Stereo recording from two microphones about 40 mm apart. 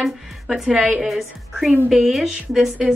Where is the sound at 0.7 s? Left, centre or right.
Centre.